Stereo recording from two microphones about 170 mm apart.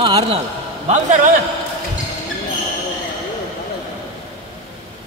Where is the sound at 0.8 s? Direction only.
45° right (ahead or behind).